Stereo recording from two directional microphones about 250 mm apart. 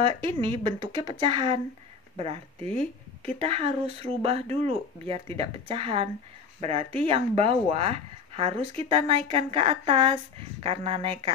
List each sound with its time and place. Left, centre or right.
0.0 s a woman's voice: right
3.3 s a woman's voice: right